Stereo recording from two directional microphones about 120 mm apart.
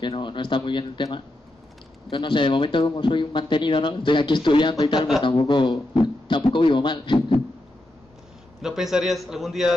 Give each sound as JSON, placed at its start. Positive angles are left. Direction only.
{"t": 0.0, "sound": "a man's voice", "side_deg": 40}
{"t": 8.6, "sound": "a man's voice", "side_deg": -5}